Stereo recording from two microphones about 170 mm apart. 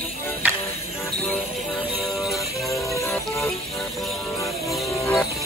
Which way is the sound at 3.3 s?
Centre (ahead or behind).